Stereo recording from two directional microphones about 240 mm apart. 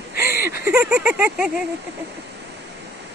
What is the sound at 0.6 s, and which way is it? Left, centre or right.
Speech, centre.